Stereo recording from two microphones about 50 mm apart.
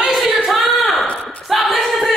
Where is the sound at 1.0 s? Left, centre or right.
Left.